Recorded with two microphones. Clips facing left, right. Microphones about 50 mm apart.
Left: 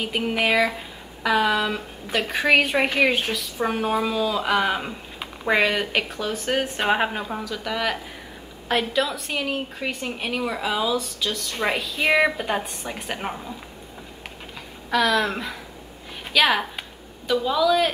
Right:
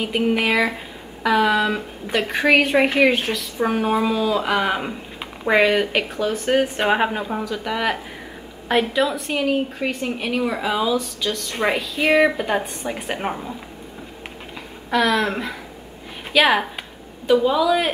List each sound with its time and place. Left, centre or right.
0.0 s a woman's voice: centre
14.9 s a woman's voice: centre